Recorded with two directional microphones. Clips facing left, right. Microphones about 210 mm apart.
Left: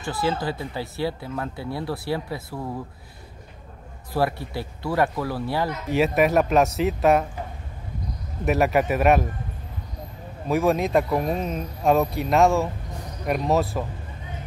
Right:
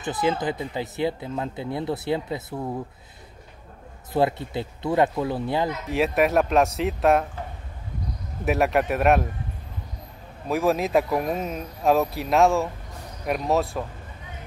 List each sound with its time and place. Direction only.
0.0 s speech: 20° right (ahead or behind)
4.1 s speech: 20° right (ahead or behind)
5.9 s speech: centre (ahead or behind)
8.5 s speech: centre (ahead or behind)
10.5 s speech: centre (ahead or behind)